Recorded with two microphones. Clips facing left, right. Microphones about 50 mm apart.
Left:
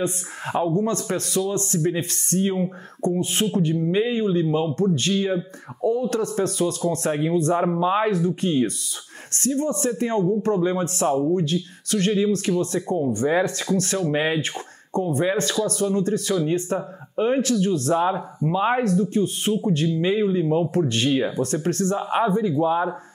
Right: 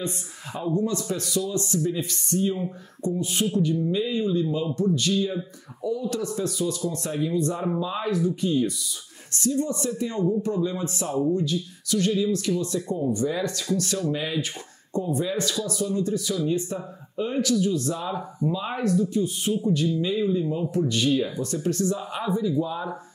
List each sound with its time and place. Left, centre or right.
0.0 s speech: left